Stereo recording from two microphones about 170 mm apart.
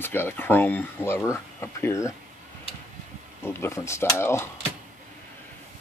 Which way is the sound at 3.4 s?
15° left (ahead or behind).